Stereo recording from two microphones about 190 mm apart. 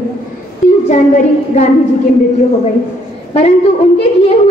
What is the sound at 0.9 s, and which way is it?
Speech, 40° left (ahead or behind).